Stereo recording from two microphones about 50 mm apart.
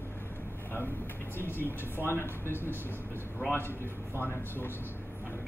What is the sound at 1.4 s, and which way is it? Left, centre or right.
Speech, left.